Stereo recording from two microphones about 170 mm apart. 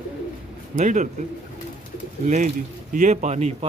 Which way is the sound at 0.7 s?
45° right (ahead or behind).